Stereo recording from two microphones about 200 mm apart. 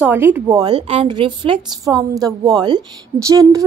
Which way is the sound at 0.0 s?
10° right (ahead or behind).